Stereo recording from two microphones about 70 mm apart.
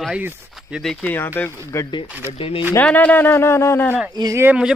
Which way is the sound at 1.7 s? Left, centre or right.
Left.